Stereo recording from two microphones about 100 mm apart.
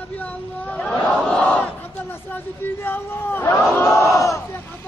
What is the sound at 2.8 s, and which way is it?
Speech, 20° left (ahead or behind).